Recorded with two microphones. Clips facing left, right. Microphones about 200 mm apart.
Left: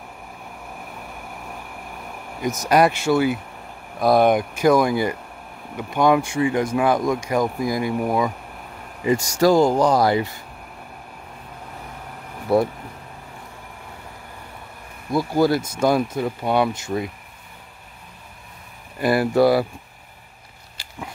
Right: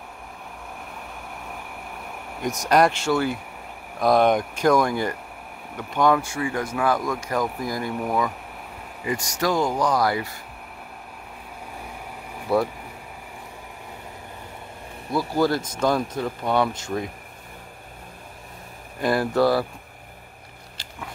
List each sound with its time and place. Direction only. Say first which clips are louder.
2.4 s speech: left 2 dB; centre (ahead or behind)
9.4 s speech: left 7 dB; 30° left (ahead or behind)
15.1 s speech: left 3 dB; 10° left (ahead or behind)
18.9 s speech: left 3 dB; 5° left (ahead or behind)
20.7 s a sound: left 3 dB; 10° left (ahead or behind)